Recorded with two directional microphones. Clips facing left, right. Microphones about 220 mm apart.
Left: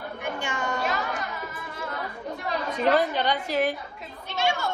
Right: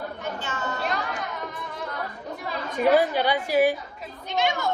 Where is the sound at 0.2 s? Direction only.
15° left (ahead or behind).